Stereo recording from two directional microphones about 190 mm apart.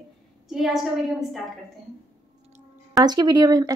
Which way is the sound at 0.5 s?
Centre (ahead or behind).